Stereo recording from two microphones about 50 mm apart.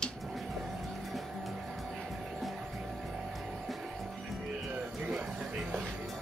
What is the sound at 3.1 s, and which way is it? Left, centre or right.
Music, centre.